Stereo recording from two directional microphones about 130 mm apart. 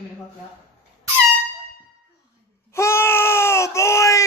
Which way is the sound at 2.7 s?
20° left (ahead or behind).